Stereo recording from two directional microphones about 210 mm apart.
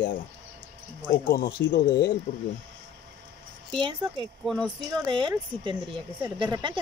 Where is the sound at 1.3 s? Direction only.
45° left (ahead or behind).